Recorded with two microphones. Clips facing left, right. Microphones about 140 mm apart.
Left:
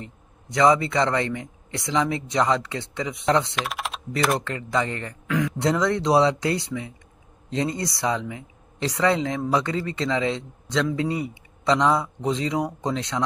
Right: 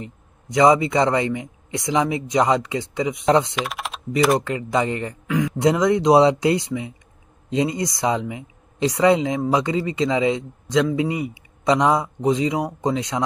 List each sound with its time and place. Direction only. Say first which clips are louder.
0.6 s speech: right 3 dB; 15° right (ahead or behind)
3.5 s typing: right 2 dB; centre (ahead or behind)
4.4 s speech: right 4 dB; 15° right (ahead or behind)